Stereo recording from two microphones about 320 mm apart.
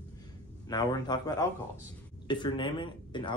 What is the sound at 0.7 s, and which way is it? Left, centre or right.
Speech, centre.